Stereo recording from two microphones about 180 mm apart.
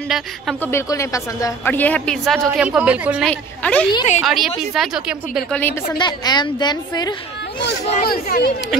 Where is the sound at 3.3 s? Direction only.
5° left (ahead or behind).